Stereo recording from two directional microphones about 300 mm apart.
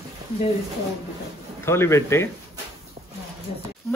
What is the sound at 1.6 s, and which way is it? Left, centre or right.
Speech, centre.